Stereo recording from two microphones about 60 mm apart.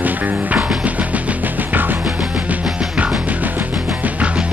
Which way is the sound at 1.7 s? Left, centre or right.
Right.